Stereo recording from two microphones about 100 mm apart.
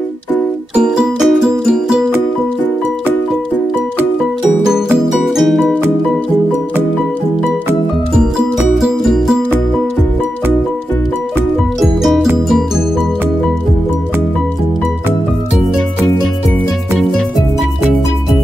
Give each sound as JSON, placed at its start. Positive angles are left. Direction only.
{"t": 0.8, "sound": "music", "side_deg": -5}
{"t": 4.6, "sound": "music", "side_deg": -5}
{"t": 8.4, "sound": "music", "side_deg": -10}
{"t": 12.0, "sound": "music", "side_deg": -5}